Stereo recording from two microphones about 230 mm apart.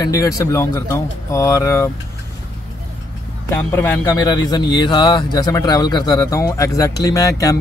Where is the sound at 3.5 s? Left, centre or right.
Centre.